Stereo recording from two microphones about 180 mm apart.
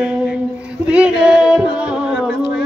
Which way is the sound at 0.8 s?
5° right (ahead or behind).